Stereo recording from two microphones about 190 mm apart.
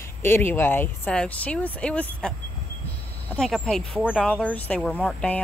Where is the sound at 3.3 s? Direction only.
Centre (ahead or behind).